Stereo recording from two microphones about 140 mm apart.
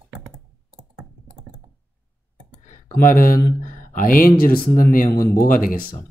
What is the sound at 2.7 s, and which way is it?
Speech, 85° left.